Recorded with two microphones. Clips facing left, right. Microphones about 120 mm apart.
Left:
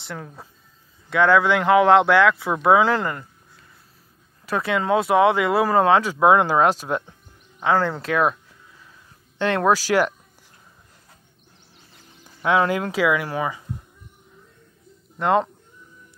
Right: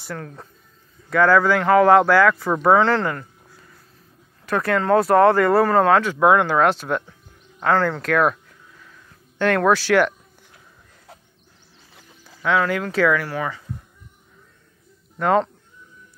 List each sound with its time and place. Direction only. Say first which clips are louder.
0.0 s speech: right 2 dB; 5° left (ahead or behind)
4.5 s speech: right 3 dB; 5° left (ahead or behind)
9.9 s speech: right 4 dB; 20° left (ahead or behind)
12.2 s speech: left 1 dB; 20° left (ahead or behind)
15.1 s speech: right 1 dB; 5° left (ahead or behind)